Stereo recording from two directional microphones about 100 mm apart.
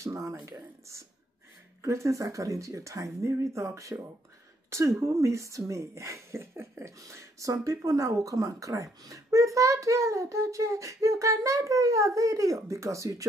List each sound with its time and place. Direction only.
0.0 s speech: 30° right (ahead or behind)